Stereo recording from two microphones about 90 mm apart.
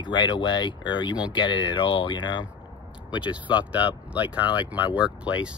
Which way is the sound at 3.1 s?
15° right (ahead or behind).